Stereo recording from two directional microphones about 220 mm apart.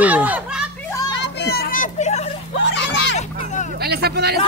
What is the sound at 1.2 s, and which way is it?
Children playing, 50° left (ahead or behind).